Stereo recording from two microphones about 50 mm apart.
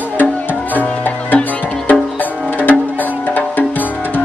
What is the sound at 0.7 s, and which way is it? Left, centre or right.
Music, left.